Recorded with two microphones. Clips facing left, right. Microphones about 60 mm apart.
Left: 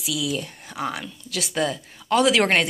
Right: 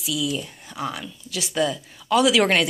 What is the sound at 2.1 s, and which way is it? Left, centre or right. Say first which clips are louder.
Speech: even; left.